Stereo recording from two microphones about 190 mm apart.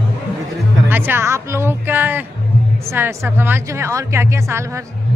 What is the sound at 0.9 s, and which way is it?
A woman's voice, 10° right (ahead or behind).